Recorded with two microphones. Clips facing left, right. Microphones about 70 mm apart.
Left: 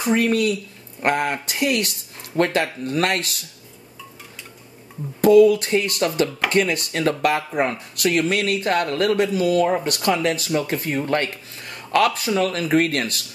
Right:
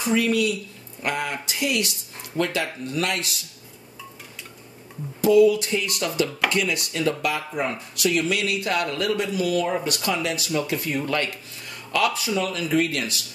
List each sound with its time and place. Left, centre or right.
0.0 s speech: left
5.2 s speech: left